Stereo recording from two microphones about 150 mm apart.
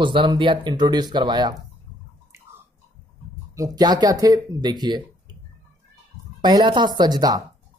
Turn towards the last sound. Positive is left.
turn(degrees=-25)  # may be behind; listen again after turning